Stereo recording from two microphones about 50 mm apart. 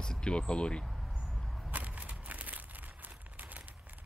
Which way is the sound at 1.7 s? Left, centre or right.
Right.